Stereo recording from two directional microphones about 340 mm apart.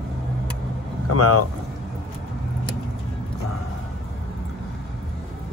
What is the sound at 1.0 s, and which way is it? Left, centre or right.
Speech, left.